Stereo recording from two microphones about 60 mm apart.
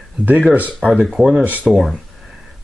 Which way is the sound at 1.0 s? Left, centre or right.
Centre.